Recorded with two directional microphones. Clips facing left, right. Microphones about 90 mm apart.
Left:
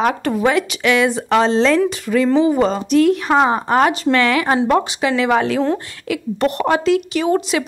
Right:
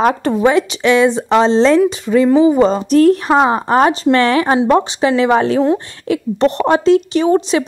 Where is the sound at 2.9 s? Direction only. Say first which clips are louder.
Right 3 dB; 40° right (ahead or behind).